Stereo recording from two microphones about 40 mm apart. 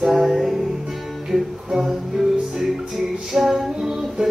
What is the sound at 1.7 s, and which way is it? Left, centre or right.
Music, centre.